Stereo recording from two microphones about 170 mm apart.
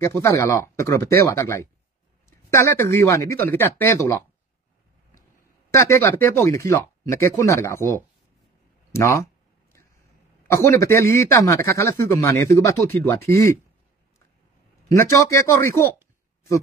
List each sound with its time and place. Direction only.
0.0 s speech: 15° left (ahead or behind)
5.7 s speech: 15° left (ahead or behind)
8.9 s a sound: 15° left (ahead or behind)
10.5 s speech: 15° left (ahead or behind)
14.9 s speech: 20° left (ahead or behind)